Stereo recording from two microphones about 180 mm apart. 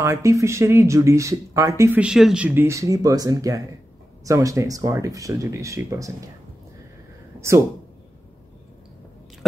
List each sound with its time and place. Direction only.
0.0 s speech: 15° right (ahead or behind)
7.3 s speech: 15° right (ahead or behind)